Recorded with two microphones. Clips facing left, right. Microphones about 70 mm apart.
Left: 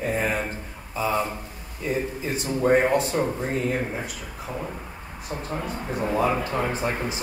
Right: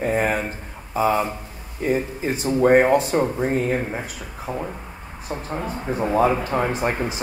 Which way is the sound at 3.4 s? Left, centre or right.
Right.